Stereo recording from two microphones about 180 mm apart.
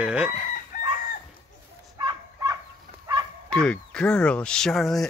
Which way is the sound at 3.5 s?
5° left (ahead or behind).